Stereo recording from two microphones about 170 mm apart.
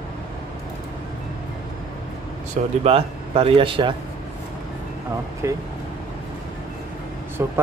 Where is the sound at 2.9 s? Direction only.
35° right (ahead or behind).